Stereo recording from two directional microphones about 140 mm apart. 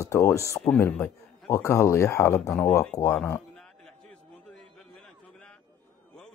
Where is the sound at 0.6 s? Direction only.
10° left (ahead or behind).